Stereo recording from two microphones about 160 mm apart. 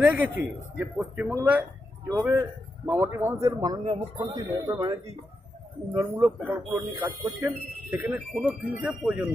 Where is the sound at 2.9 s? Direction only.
15° right (ahead or behind).